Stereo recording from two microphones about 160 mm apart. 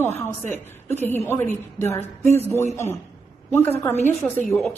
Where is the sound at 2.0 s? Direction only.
45° right (ahead or behind).